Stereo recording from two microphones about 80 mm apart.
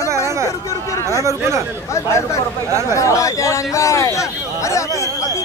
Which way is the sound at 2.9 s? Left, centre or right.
Left.